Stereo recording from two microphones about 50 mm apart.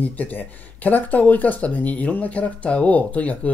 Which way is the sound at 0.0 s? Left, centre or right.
Left.